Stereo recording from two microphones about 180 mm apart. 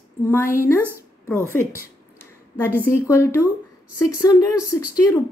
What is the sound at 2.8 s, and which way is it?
Speech, 15° left (ahead or behind).